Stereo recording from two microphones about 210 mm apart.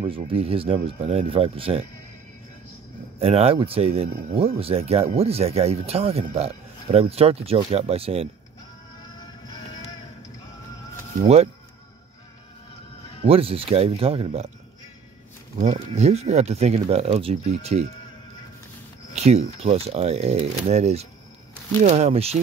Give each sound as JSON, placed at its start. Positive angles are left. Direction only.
{"t": 0.0, "sound": "speech", "side_deg": -25}
{"t": 3.2, "sound": "speech", "side_deg": -30}
{"t": 13.2, "sound": "speech", "side_deg": -25}
{"t": 15.6, "sound": "speech", "side_deg": -30}
{"t": 19.1, "sound": "speech", "side_deg": -30}